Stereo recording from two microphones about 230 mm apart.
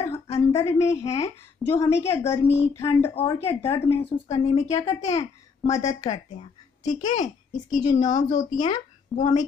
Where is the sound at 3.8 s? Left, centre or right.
Centre.